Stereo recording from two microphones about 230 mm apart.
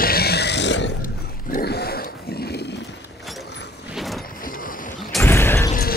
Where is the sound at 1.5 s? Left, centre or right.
Left.